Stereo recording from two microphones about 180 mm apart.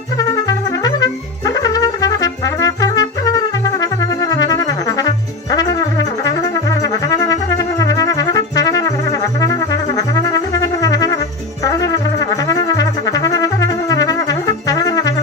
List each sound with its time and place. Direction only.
0.2 s trumpet: 20° left (ahead or behind)
11.6 s brass instrument: 20° left (ahead or behind)